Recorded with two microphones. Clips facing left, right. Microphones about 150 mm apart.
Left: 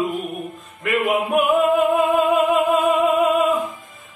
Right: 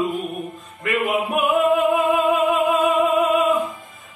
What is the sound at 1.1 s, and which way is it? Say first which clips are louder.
Music: left 3 dB; centre (ahead or behind).